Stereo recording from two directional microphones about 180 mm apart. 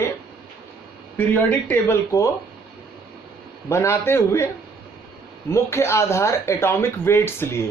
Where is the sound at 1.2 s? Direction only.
10° left (ahead or behind).